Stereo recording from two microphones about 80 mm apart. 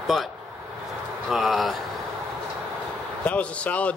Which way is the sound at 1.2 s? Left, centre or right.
Centre.